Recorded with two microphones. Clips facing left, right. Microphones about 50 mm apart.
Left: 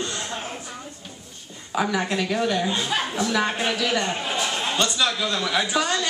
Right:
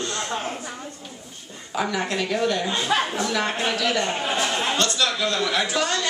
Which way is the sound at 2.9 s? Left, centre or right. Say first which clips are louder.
Right 7 dB; right.